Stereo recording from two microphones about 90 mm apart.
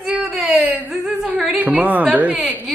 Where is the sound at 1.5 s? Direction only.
20° right (ahead or behind).